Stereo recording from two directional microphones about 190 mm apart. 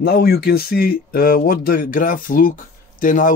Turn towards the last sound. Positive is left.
turn(degrees=45)  # may be behind; listen again after turning